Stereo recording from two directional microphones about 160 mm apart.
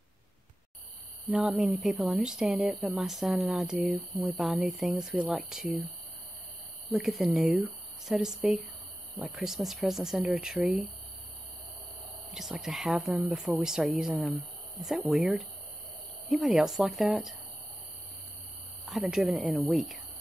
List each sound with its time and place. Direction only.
1.3 s a woman's voice: centre (ahead or behind)
7.0 s a woman's voice: centre (ahead or behind)
12.3 s a woman's voice: 5° right (ahead or behind)
18.9 s a woman's voice: centre (ahead or behind)